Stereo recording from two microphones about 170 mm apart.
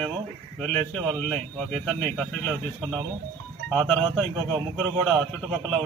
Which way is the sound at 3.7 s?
5° left (ahead or behind).